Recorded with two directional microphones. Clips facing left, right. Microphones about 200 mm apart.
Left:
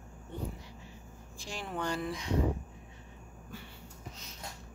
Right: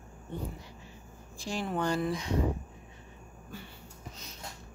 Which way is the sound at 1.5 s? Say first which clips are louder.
Right 5 dB; 35° right (ahead or behind).